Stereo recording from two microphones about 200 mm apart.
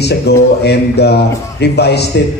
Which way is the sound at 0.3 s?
55° left (ahead or behind).